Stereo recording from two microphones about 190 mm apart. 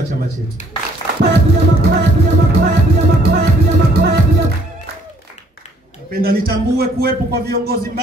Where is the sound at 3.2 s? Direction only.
60° right (ahead or behind).